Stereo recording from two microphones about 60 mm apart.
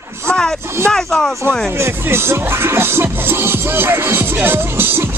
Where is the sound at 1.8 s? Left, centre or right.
Right.